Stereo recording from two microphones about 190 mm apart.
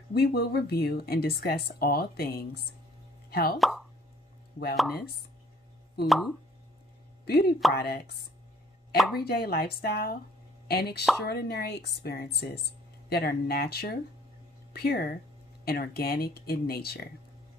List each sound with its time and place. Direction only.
0.1 s speech: 55° left (ahead or behind)
3.3 s plop: 50° left (ahead or behind)
3.5 s speech: centre (ahead or behind)
6.0 s speech: centre (ahead or behind)
7.2 s speech: 55° left (ahead or behind)
8.9 s speech: centre (ahead or behind)
9.3 s speech: 55° left (ahead or behind)